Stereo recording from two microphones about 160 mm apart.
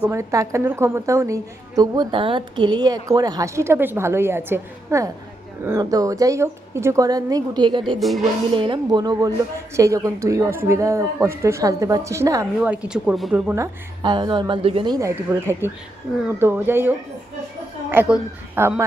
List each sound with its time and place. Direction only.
0.1 s a woman's voice: 20° right (ahead or behind)
8.0 s speech: centre (ahead or behind)
8.5 s a woman's voice: 30° right (ahead or behind)
12.7 s speech: 5° right (ahead or behind)
13.6 s a woman's voice: 25° right (ahead or behind)
15.0 s a woman's voice: 15° right (ahead or behind)
17.9 s a woman's voice: 10° right (ahead or behind)